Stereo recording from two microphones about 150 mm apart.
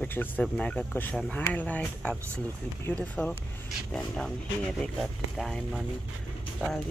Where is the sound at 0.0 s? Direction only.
10° left (ahead or behind).